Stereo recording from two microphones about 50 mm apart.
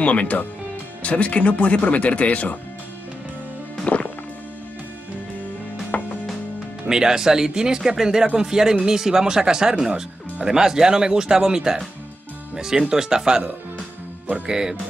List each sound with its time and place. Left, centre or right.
0.0 s speech: left
3.8 s music: left
5.9 s chopping: left
6.9 s speech: centre